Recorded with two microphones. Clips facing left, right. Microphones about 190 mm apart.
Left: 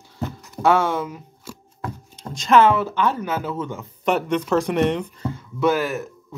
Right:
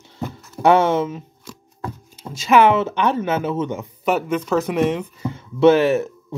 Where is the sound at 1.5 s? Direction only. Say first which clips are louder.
Left 1 dB; centre (ahead or behind).